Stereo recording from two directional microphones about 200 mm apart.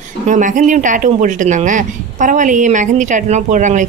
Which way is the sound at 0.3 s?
40° right (ahead or behind).